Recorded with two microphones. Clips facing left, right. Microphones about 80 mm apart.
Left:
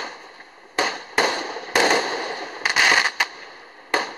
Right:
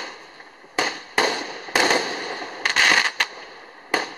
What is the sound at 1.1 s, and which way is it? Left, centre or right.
Fireworks, centre.